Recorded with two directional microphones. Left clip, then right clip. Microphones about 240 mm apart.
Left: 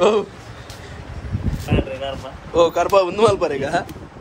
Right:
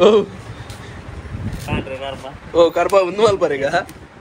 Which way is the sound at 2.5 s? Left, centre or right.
Centre.